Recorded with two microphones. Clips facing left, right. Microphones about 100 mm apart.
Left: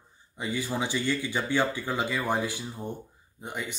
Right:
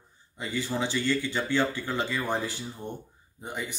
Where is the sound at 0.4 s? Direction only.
15° left (ahead or behind).